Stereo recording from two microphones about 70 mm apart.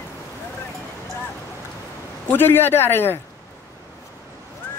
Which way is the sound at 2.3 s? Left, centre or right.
Left.